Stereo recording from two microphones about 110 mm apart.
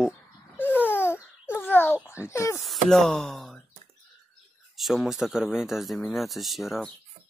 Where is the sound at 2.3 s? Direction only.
25° left (ahead or behind).